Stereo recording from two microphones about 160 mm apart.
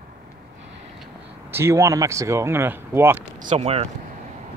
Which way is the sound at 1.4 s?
15° right (ahead or behind).